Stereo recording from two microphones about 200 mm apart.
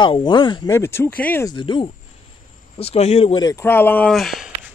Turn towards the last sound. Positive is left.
turn(degrees=0)  # may be behind; listen again after turning